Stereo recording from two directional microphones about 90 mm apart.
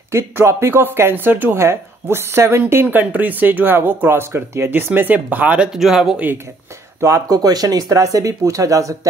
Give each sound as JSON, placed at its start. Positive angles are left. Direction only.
{"t": 0.1, "sound": "speech", "side_deg": -30}
{"t": 7.0, "sound": "speech", "side_deg": -40}